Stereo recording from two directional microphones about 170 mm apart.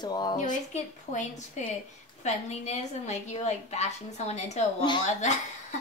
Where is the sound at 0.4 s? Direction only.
45° left (ahead or behind).